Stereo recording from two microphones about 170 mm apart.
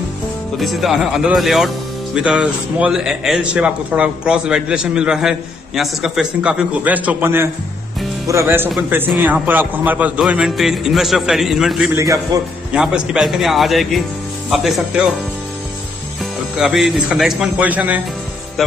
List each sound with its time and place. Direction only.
0.6 s a man's voice: centre (ahead or behind)
12.0 s a man's voice: 20° right (ahead or behind)
12.7 s a man's voice: 5° right (ahead or behind)
16.5 s a man's voice: centre (ahead or behind)